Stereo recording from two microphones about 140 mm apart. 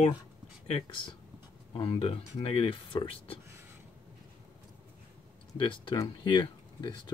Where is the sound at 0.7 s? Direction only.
40° left (ahead or behind).